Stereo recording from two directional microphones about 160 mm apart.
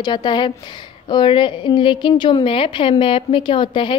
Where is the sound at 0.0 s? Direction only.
30° left (ahead or behind).